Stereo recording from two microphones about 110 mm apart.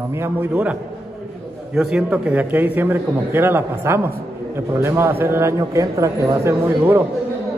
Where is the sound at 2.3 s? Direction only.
15° right (ahead or behind).